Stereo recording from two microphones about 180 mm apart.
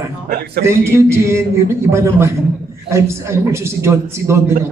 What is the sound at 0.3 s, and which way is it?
Speech, 70° right (ahead or behind).